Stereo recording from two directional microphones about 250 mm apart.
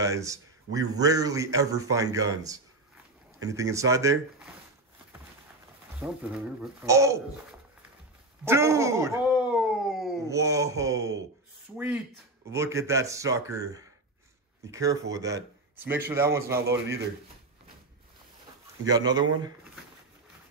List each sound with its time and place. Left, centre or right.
0.0 s speech: centre
5.9 s speech: centre
8.5 s speech: centre
9.3 s a sound: centre
10.2 s speech: centre
18.9 s speech: centre